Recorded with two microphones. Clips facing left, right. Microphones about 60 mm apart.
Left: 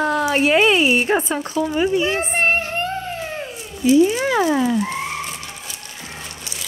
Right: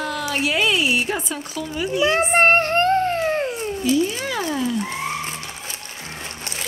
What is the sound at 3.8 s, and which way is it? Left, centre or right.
Speech, left.